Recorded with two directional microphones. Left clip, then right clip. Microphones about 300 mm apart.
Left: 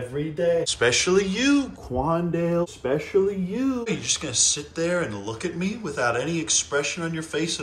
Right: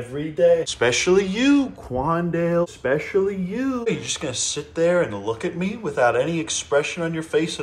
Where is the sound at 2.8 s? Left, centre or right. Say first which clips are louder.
Right 3 dB; left.